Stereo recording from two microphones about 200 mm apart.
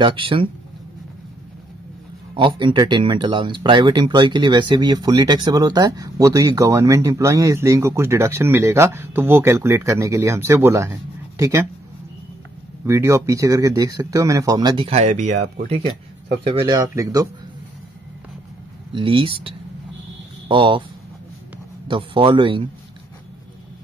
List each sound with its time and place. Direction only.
0.0 s speech: 25° right (ahead or behind)
2.3 s speech: 25° right (ahead or behind)
12.8 s speech: 15° right (ahead or behind)
18.9 s speech: 25° right (ahead or behind)
21.8 s speech: 25° right (ahead or behind)